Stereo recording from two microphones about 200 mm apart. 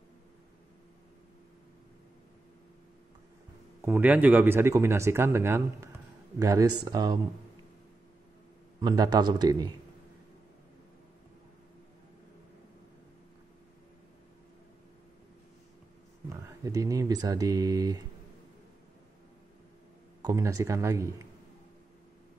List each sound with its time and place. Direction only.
3.8 s speech: 10° right (ahead or behind)
8.8 s a man's voice: 20° right (ahead or behind)
16.4 s speech: 15° right (ahead or behind)
20.2 s speech: 20° right (ahead or behind)